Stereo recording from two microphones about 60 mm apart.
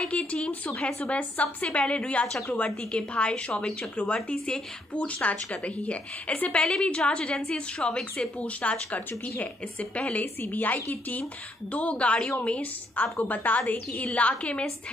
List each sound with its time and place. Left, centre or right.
0.0 s speech: left